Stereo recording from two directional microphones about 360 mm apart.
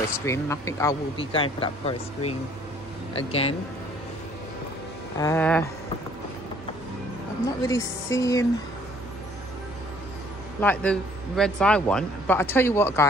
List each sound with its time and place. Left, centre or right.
0.2 s speech: centre
5.2 s speech: centre
7.6 s speech: centre
10.6 s speech: centre